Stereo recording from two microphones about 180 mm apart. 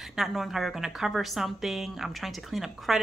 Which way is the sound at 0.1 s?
Centre (ahead or behind).